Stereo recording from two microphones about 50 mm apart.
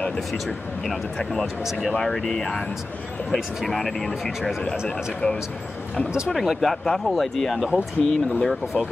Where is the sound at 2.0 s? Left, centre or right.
Centre.